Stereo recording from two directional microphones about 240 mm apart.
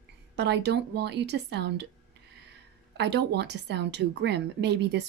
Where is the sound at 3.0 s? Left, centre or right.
Right.